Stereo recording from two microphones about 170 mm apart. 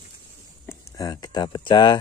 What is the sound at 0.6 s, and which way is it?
Speech, 20° left (ahead or behind).